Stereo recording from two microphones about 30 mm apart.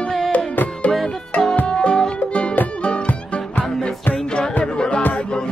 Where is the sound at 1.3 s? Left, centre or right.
Left.